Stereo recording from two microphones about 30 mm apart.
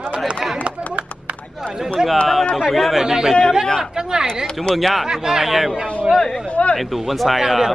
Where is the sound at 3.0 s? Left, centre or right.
Centre.